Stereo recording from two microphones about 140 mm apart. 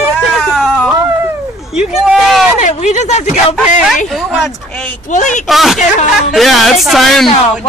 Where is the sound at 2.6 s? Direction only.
55° left (ahead or behind).